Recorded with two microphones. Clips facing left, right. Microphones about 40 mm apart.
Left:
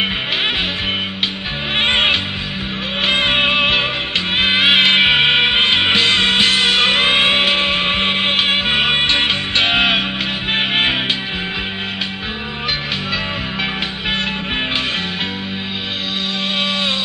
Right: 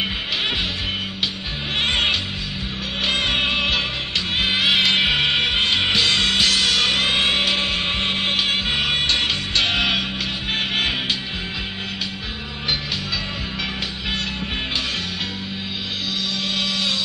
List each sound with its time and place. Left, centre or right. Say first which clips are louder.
1.8 s music: left 5 dB; left